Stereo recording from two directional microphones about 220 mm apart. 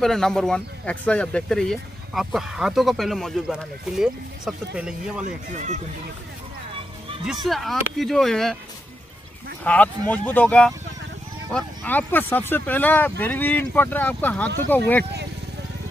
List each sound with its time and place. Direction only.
0.0 s speech: centre (ahead or behind)
5.2 s speech: 35° right (ahead or behind)
7.4 s speech: centre (ahead or behind)
9.6 s speech: 5° left (ahead or behind)